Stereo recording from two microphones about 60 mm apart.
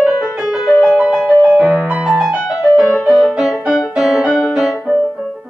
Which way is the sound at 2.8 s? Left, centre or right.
Centre.